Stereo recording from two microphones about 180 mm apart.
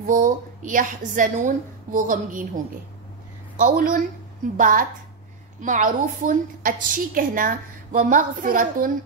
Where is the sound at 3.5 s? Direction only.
50° right (ahead or behind).